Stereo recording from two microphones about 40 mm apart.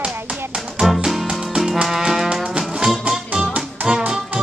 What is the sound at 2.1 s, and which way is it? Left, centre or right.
Music, centre.